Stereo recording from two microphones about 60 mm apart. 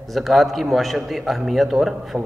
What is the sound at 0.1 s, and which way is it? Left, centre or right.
A man's voice, centre.